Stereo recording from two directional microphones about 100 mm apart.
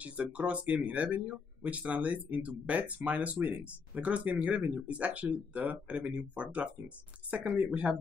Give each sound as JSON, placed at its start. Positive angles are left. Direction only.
{"t": 0.0, "sound": "speech", "side_deg": -15}